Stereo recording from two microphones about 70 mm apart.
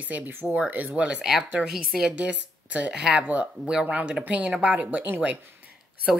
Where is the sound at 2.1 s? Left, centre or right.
Centre.